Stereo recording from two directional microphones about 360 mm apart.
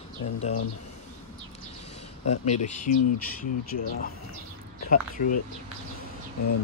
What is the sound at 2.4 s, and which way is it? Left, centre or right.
Speech, left.